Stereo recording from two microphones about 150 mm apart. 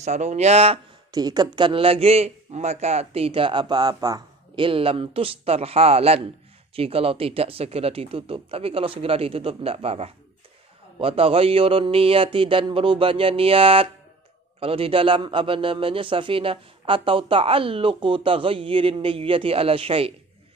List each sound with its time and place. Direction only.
0.0 s speech: 50° right (ahead or behind)
1.1 s a man's voice: 25° right (ahead or behind)